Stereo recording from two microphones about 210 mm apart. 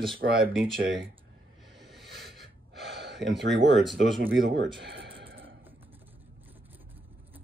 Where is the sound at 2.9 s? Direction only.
55° right (ahead or behind).